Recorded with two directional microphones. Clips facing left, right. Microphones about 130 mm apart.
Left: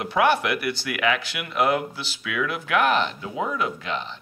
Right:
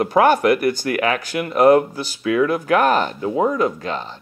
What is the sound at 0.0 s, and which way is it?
Speech, 45° right (ahead or behind).